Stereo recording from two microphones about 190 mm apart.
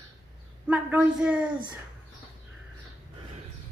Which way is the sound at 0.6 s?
10° right (ahead or behind).